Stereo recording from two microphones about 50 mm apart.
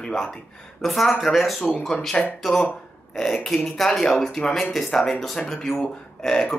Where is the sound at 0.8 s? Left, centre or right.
Centre.